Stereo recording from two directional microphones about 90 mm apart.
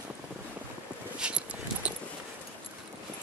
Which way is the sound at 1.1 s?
10° right (ahead or behind).